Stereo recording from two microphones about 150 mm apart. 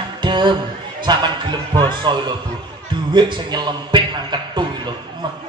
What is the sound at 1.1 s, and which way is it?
A man's voice, 30° right (ahead or behind).